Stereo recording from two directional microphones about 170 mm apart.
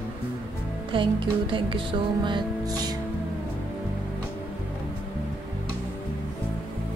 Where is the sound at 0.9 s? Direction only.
30° right (ahead or behind).